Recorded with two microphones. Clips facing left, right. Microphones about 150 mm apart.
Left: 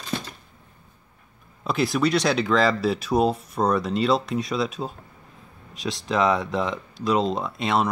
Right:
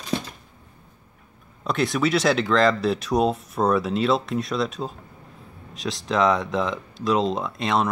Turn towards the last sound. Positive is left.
turn(degrees=0)  # may be behind; listen again after turning